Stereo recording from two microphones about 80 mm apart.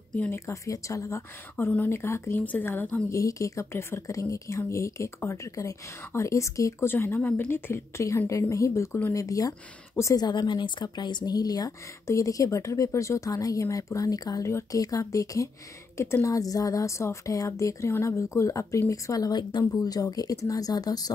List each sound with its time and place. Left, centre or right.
0.3 s a woman's voice: left
3.1 s a woman's voice: left
6.9 s a woman's voice: left
8.3 s a woman's voice: left
10.1 s a woman's voice: left